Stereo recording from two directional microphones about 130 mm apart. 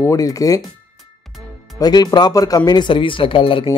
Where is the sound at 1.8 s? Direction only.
30° left (ahead or behind).